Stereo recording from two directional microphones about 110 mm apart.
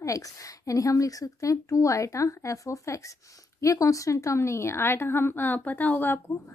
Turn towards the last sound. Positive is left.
turn(degrees=20)  # may be behind; listen again after turning